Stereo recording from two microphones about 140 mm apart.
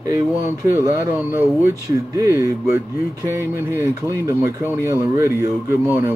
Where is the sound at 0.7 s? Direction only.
20° right (ahead or behind).